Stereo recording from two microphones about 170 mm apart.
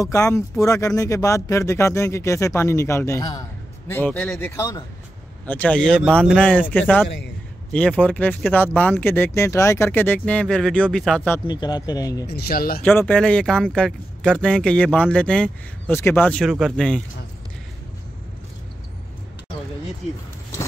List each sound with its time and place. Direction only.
0.0 s speech: 20° left (ahead or behind)
5.5 s speech: 10° left (ahead or behind)
11.4 s speech: 25° left (ahead or behind)
12.3 s speech: 70° left (ahead or behind)
12.8 s speech: 10° left (ahead or behind)